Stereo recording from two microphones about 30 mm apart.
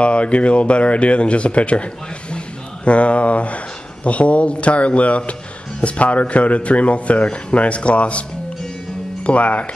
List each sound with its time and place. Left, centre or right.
0.0 s speech: left
2.3 s a sound: left
4.0 s speech: left